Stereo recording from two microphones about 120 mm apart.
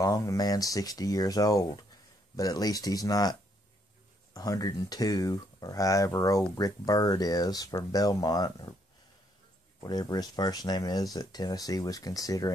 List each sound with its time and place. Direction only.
0.0 s speech: 30° left (ahead or behind)
9.8 s speech: 35° left (ahead or behind)